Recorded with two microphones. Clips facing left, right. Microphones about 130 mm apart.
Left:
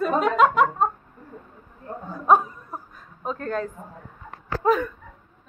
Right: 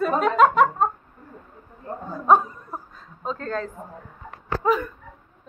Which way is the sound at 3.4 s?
20° left (ahead or behind).